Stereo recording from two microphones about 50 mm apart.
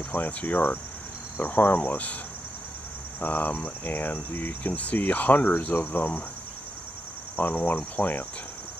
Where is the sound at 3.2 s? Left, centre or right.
Left.